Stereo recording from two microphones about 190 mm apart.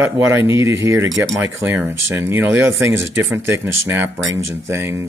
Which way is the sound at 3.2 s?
90° right.